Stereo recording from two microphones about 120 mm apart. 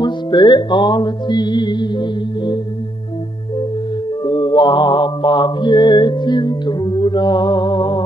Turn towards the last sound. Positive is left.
turn(degrees=40)  # may be behind; listen again after turning